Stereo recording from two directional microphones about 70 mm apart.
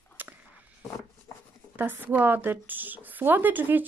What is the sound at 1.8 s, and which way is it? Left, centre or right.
Speech, right.